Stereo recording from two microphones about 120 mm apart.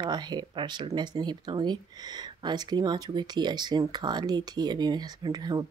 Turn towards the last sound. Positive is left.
turn(degrees=-35)  # may be behind; listen again after turning